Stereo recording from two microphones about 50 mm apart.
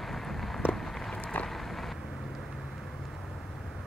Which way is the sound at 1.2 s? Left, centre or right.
Left.